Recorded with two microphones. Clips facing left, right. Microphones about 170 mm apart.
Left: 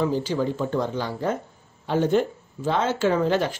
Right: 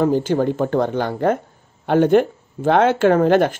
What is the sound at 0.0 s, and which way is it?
Speech, 55° right (ahead or behind).